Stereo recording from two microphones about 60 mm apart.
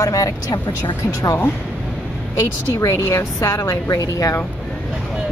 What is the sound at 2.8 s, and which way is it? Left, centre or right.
A woman's voice, left.